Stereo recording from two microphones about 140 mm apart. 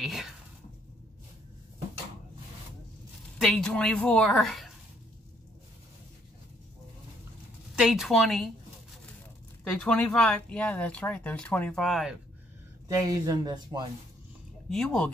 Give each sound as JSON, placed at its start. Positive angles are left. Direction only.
{"t": 0.0, "sound": "a sound", "side_deg": 0}
{"t": 3.3, "sound": "a woman's voice", "side_deg": 5}
{"t": 7.7, "sound": "a woman's voice", "side_deg": 0}
{"t": 9.8, "sound": "speech", "side_deg": 5}
{"t": 12.8, "sound": "speech", "side_deg": -25}
{"t": 14.7, "sound": "a woman's voice", "side_deg": 5}